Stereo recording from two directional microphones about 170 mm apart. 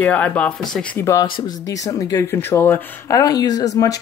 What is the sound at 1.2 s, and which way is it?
Speech, 30° left (ahead or behind).